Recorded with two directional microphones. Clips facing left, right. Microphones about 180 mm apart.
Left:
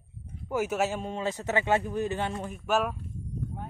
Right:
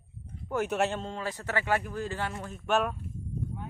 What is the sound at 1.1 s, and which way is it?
Speech, 20° left (ahead or behind).